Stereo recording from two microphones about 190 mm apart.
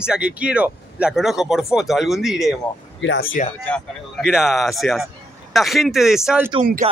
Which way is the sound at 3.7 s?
Centre (ahead or behind).